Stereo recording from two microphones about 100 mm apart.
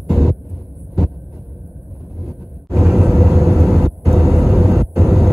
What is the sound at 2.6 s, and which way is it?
Vehicle, centre (ahead or behind).